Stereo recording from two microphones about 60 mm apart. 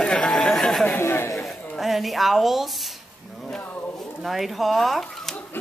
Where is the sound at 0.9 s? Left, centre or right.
Left.